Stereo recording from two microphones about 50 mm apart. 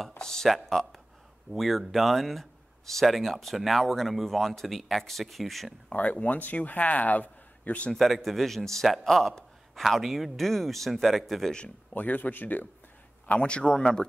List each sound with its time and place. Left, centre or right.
0.2 s a sound: centre
0.5 s a man's voice: centre
5.9 s a man's voice: left
7.9 s a man's voice: centre
11.9 s a man's voice: left
13.3 s speech: left